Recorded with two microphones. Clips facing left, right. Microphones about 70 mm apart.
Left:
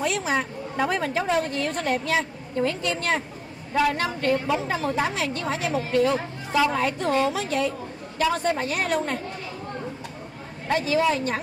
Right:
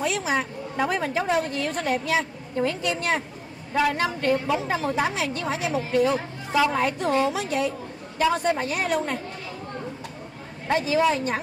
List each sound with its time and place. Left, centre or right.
0.0 s a woman's voice: centre
8.7 s a woman's voice: centre
10.7 s speech: centre